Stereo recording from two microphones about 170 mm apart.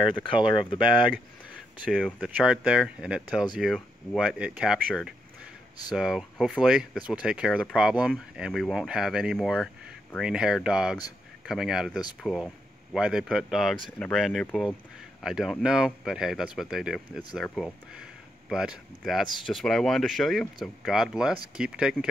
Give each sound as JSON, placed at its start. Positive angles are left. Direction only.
{"t": 0.1, "sound": "speech", "side_deg": 30}
{"t": 1.9, "sound": "speech", "side_deg": 0}
{"t": 5.9, "sound": "speech", "side_deg": -5}